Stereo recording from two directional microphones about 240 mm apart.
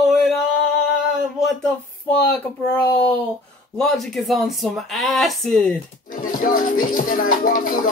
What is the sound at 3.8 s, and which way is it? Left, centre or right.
Speech, centre.